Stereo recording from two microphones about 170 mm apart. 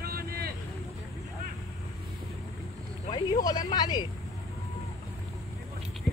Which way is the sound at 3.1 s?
20° left (ahead or behind).